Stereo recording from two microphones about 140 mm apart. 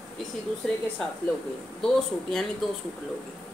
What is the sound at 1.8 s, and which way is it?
Speech, 5° left (ahead or behind).